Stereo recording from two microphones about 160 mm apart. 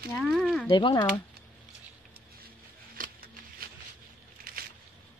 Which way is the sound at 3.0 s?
65° right (ahead or behind).